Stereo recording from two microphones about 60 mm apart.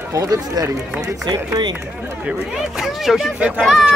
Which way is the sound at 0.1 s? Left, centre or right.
Right.